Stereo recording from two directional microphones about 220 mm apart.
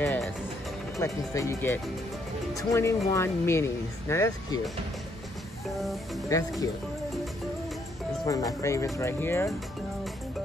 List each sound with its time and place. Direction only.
0.0 s music: 10° left (ahead or behind)
0.9 s speech: 15° left (ahead or behind)
6.3 s speech: 15° left (ahead or behind)
8.3 s speech: 15° left (ahead or behind)